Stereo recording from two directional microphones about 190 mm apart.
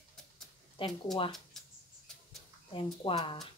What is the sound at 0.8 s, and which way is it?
Speech, 30° left (ahead or behind).